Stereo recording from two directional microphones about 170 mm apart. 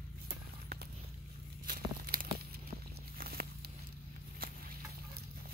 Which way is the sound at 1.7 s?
60° right (ahead or behind).